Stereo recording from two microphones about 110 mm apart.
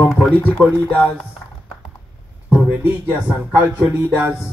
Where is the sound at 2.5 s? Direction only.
15° right (ahead or behind).